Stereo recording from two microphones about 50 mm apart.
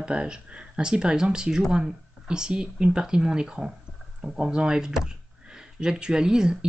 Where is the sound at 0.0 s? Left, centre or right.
Centre.